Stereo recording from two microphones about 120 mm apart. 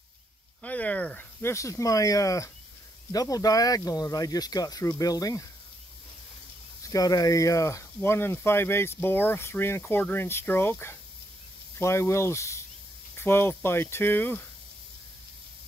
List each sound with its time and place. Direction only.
0.6 s speech: 10° left (ahead or behind); by 5.5 s 30° left (ahead or behind)
6.8 s speech: 30° left (ahead or behind)